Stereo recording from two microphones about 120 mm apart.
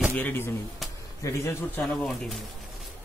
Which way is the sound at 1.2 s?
25° left (ahead or behind).